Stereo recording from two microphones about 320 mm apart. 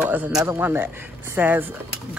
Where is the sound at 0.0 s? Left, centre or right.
Centre.